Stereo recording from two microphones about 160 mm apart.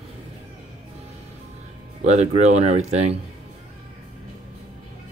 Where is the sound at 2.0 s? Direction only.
45° right (ahead or behind).